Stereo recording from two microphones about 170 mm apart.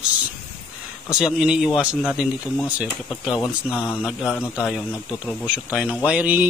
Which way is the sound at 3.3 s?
15° left (ahead or behind).